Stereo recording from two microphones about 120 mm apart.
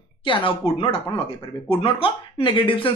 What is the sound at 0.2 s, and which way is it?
Speech, 45° left (ahead or behind).